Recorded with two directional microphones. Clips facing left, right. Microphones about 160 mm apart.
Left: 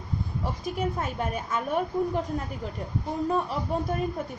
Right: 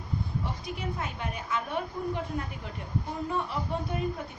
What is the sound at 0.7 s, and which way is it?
A woman's voice, 45° left (ahead or behind).